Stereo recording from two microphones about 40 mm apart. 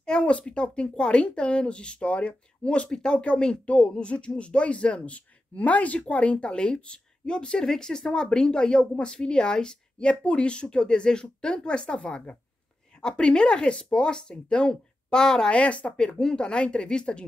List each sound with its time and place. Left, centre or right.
0.0 s a sound: centre
0.3 s speech: left
3.6 s speech: left